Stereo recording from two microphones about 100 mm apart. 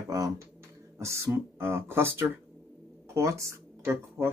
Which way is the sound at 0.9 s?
30° right (ahead or behind).